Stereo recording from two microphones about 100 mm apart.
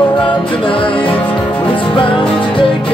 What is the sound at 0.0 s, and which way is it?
Music, 55° left (ahead or behind).